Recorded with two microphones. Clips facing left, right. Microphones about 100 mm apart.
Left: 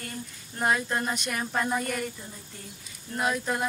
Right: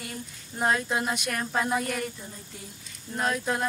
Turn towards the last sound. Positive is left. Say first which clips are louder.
# even
turn(degrees=5)  # may be behind; listen again after turning